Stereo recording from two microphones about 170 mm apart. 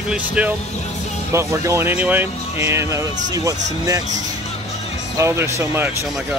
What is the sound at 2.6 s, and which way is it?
Music, 15° right (ahead or behind).